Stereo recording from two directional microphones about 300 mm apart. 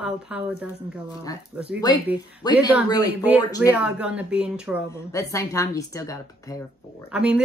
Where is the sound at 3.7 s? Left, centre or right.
Centre.